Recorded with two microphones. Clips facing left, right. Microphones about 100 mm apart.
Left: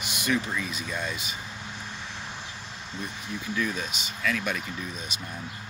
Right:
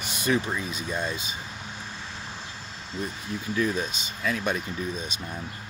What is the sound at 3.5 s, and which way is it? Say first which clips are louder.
Speech: right 4 dB; 35° right (ahead or behind).